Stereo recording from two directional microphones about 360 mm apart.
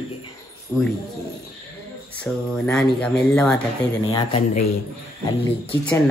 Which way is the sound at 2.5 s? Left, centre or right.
Centre.